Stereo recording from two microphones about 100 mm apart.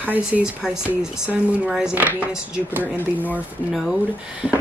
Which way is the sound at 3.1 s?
15° right (ahead or behind).